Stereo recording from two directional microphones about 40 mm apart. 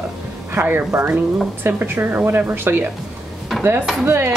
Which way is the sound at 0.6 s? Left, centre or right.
Right.